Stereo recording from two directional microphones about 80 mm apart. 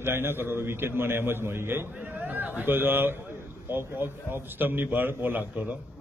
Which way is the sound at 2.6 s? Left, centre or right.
Right.